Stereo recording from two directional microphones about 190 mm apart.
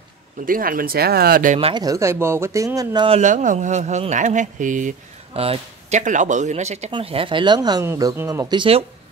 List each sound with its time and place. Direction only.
0.5 s speech: 50° right (ahead or behind)
1.6 s speech: 25° right (ahead or behind)
3.2 s speech: 40° right (ahead or behind)